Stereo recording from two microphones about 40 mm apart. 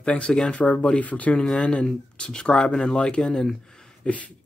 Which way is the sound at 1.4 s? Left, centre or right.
Left.